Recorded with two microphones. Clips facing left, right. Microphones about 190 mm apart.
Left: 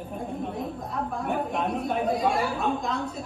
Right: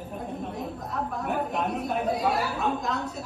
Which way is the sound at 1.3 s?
5° right (ahead or behind).